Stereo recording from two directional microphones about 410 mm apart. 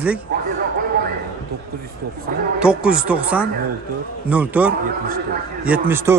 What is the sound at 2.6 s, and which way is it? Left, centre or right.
A man's voice, centre.